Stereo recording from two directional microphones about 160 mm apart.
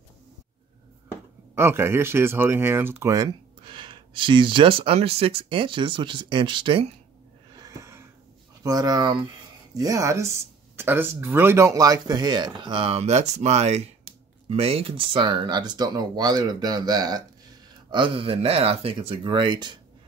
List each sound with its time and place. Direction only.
1.5 s speech: 15° right (ahead or behind); by 6.9 s 35° right (ahead or behind)
7.6 s snort: 20° right (ahead or behind)
8.6 s speech: 25° right (ahead or behind)